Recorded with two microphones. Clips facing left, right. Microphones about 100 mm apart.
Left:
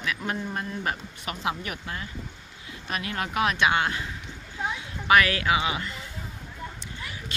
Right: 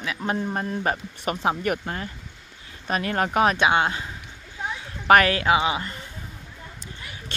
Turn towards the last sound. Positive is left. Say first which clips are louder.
# right 4 dB
turn(degrees=-25)  # may be behind; listen again after turning